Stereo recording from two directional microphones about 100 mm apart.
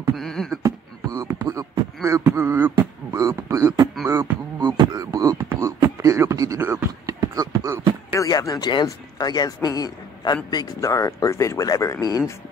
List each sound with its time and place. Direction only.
0.1 s beatboxing: 5° left (ahead or behind)
0.6 s beatboxing: 35° right (ahead or behind)
3.1 s beatboxing: 30° right (ahead or behind)
4.6 s beatboxing: 45° right (ahead or behind)
5.5 s a sound: 35° right (ahead or behind)
8.1 s a man's voice: 35° left (ahead or behind)